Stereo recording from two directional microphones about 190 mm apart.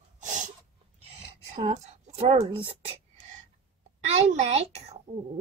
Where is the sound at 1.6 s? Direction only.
35° right (ahead or behind).